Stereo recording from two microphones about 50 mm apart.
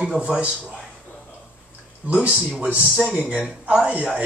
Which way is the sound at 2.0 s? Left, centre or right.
Right.